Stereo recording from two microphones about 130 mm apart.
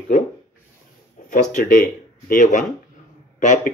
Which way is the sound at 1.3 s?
90° left.